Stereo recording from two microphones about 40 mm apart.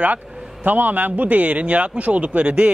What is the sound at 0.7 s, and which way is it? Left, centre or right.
Speech, right.